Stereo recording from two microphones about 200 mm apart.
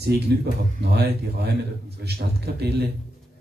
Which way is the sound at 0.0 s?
55° right (ahead or behind).